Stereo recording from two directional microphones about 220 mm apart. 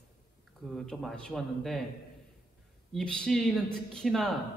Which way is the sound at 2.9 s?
5° left (ahead or behind).